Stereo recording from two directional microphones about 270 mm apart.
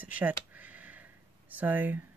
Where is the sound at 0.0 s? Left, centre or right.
Centre.